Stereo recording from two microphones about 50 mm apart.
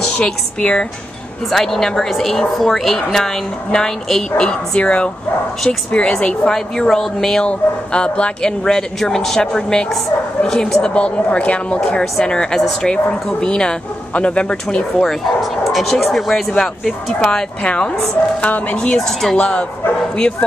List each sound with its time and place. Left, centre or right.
0.0 s a sound: centre
0.6 s speech: centre
1.5 s a woman's voice: centre
7.4 s a woman's voice: left
15.7 s a woman's voice: centre
18.4 s speech: left
18.9 s a woman's voice: centre
19.3 s speech: left